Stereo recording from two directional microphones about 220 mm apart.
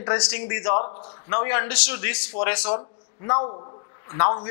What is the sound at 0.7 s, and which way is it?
Speech, 30° left (ahead or behind).